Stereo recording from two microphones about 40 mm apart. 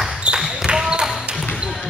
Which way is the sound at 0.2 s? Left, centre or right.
Right.